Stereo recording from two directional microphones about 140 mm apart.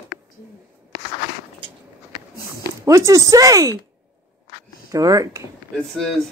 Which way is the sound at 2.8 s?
25° right (ahead or behind).